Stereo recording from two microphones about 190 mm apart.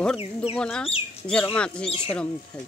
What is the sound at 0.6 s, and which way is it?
Speech, 5° left (ahead or behind).